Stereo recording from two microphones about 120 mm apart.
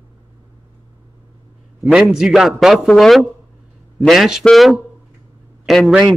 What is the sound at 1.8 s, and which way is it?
A man's voice, 5° right (ahead or behind).